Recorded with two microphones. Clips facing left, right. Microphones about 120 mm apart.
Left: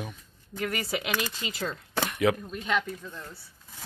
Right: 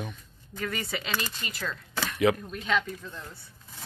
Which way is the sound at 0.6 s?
10° left (ahead or behind).